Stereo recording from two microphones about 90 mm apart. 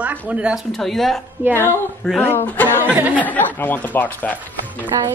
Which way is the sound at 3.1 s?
20° left (ahead or behind).